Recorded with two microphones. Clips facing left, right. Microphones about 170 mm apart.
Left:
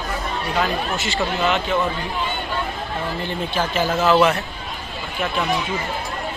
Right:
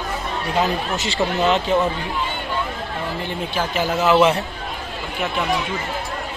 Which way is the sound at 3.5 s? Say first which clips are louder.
Even; 10° right (ahead or behind).